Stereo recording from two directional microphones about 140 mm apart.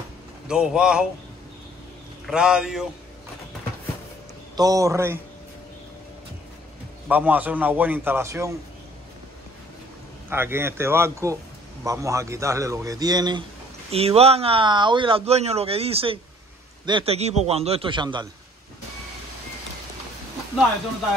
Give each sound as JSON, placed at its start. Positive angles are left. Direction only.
{"t": 0.5, "sound": "speech", "side_deg": -5}
{"t": 2.2, "sound": "speech", "side_deg": -5}
{"t": 4.6, "sound": "a man's voice", "side_deg": -25}
{"t": 7.1, "sound": "a man's voice", "side_deg": -10}
{"t": 10.3, "sound": "a man's voice", "side_deg": -15}
{"t": 13.8, "sound": "a man's voice", "side_deg": -45}
{"t": 17.1, "sound": "a man's voice", "side_deg": -50}